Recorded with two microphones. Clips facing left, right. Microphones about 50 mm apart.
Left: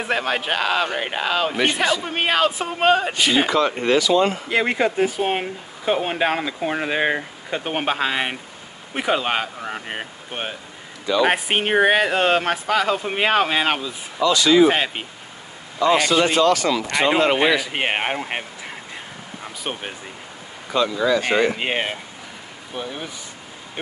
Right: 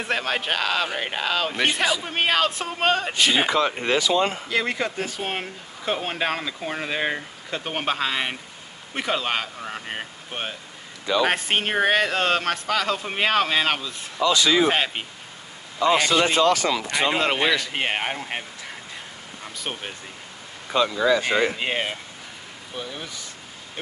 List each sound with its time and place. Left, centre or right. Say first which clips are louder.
0.0 s speech: left 3 dB; centre
4.0 s speech: left 3 dB; right
4.5 s speech: left 5 dB; left
14.2 s speech: left 3 dB; right
14.6 s speech: left 5 dB; centre
16.3 s speech: left 2 dB; right
16.9 s speech: left 6 dB; centre; by 18.4 s left
19.4 s speech: left 3 dB; centre
20.7 s speech: left 1 dB; right
21.2 s speech: left 3 dB; left